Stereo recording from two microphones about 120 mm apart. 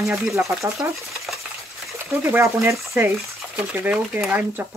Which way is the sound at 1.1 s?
Centre (ahead or behind).